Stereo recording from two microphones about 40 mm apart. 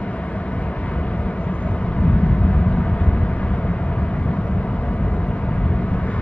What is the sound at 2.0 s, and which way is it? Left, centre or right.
Vehicle, left.